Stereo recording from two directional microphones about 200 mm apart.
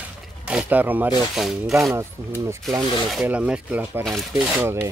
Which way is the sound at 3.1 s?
5° right (ahead or behind).